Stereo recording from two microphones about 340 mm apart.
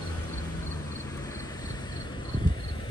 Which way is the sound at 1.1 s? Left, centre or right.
Centre.